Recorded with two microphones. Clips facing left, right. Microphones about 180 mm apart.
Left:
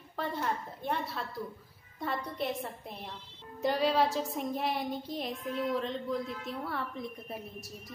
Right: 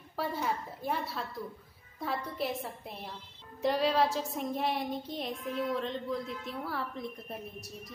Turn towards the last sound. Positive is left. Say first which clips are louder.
# even
turn(degrees=0)  # may be behind; listen again after turning